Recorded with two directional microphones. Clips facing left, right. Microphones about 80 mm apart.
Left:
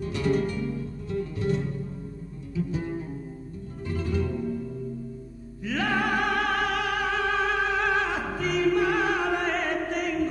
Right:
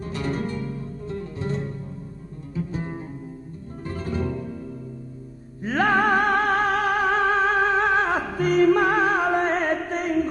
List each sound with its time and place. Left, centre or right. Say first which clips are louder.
0.0 s music: left 2 dB; right
3.8 s music: even; right
5.6 s music: right 6 dB; right